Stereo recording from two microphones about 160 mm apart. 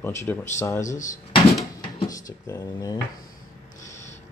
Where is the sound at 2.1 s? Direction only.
20° left (ahead or behind).